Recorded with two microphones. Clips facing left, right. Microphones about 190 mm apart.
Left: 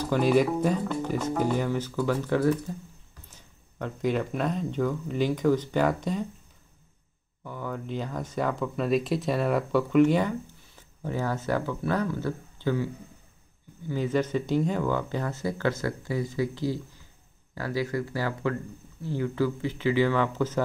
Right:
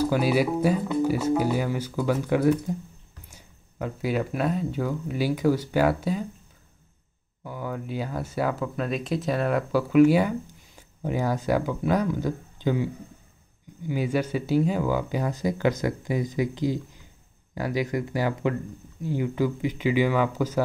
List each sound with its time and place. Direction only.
0.0 s speech: 5° right (ahead or behind)
7.4 s speech: 10° right (ahead or behind)